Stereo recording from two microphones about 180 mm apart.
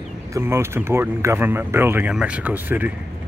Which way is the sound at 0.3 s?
15° right (ahead or behind).